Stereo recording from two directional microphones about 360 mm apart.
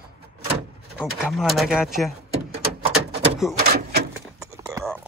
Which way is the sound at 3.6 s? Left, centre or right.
Right.